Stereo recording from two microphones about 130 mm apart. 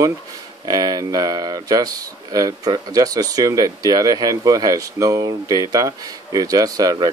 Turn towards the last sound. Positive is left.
turn(degrees=-30)  # may be behind; listen again after turning